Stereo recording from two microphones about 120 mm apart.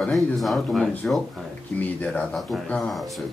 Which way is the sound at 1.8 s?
10° left (ahead or behind).